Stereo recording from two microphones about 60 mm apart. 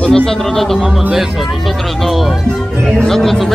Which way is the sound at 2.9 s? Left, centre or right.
Centre.